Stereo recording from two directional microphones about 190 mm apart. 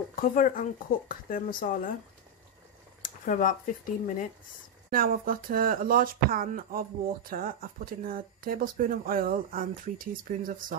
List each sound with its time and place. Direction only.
0.1 s speech: 45° left (ahead or behind)
3.0 s speech: 45° left (ahead or behind)
4.9 s speech: 50° right (ahead or behind)